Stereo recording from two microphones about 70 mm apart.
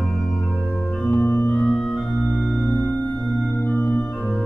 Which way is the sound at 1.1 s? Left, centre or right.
Left.